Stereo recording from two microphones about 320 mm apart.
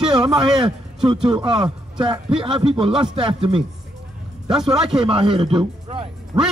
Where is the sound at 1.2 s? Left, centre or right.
Centre.